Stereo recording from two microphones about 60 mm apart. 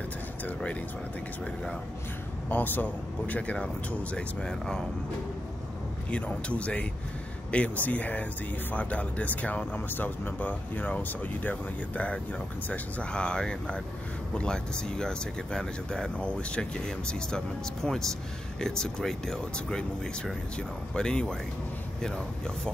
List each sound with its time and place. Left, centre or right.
0.6 s speech: left
2.5 s speech: left
4.5 s speech: centre
6.0 s speech: left